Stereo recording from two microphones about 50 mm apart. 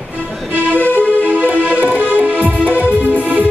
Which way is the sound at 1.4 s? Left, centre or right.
Right.